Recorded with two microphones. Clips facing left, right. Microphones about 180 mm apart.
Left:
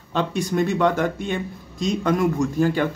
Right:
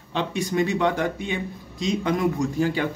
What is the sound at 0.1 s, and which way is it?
Speech, 45° left (ahead or behind).